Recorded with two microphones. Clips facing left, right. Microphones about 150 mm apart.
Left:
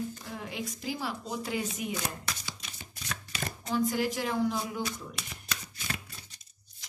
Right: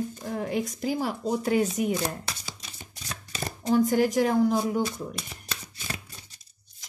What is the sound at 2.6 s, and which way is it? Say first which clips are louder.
Shuffling cards: right 1 dB; 30° right (ahead or behind).